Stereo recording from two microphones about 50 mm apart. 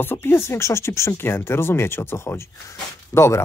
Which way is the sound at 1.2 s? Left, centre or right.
Left.